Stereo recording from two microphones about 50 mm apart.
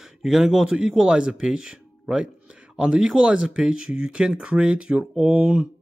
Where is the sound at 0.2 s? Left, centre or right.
Centre.